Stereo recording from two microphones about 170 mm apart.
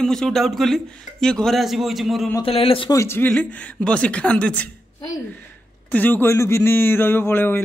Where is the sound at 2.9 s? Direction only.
15° left (ahead or behind).